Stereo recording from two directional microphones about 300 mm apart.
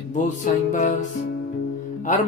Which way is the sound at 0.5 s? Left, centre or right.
Left.